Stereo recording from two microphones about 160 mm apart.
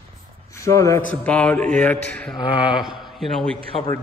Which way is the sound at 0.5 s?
20° left (ahead or behind).